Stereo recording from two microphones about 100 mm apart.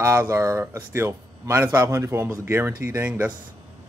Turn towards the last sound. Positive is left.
turn(degrees=-25)  # may be behind; listen again after turning